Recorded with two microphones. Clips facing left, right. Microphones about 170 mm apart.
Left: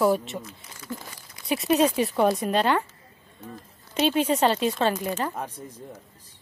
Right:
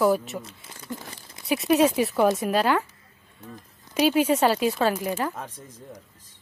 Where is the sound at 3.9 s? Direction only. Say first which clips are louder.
Right 2 dB; 10° right (ahead or behind).